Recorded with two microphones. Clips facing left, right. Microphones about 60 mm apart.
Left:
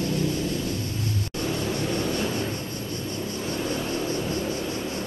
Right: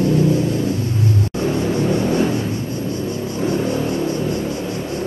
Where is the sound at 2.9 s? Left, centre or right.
Right.